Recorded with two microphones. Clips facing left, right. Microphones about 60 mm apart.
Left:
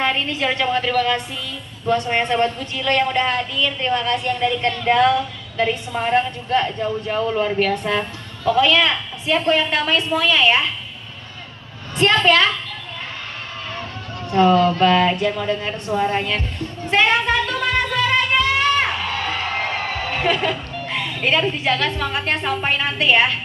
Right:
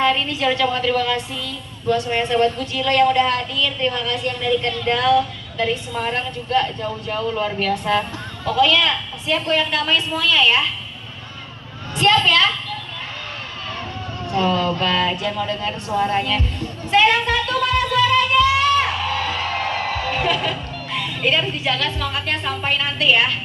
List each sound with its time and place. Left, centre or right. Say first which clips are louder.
0.0 s a woman's voice: right 2 dB; left
10.1 s a woman's voice: left 1 dB; left
12.0 s a woman's voice: left 1 dB; centre
14.3 s a woman's voice: left 5 dB; left
16.9 s music: right 1 dB; left
19.2 s music: even; centre
20.9 s a sound: even; left
21.5 s a woman's voice: left 2 dB; left